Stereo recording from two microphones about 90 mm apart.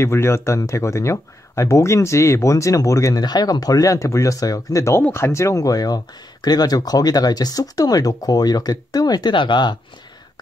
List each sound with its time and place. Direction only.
0.0 s speech: 30° left (ahead or behind); by 9.8 s 60° left (ahead or behind)